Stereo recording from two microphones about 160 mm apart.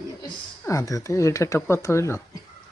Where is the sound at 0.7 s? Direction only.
20° left (ahead or behind).